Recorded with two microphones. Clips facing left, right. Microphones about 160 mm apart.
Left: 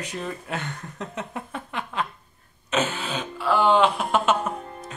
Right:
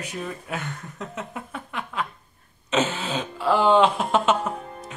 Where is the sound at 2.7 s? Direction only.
25° right (ahead or behind).